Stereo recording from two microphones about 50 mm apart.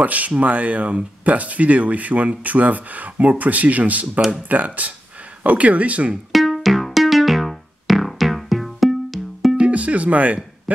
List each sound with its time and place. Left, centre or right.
0.0 s speech: right
6.3 s music: centre
9.6 s music: right